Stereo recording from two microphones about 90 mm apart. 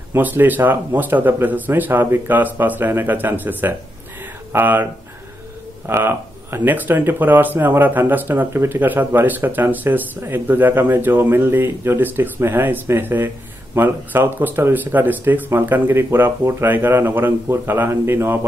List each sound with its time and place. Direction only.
0.1 s speech: 20° right (ahead or behind)
5.9 s speech: 25° right (ahead or behind)